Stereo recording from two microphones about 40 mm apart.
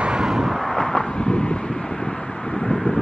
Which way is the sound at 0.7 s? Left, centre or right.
Centre.